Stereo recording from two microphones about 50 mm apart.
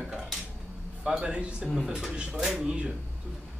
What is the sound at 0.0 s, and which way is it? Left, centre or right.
Dishes, centre.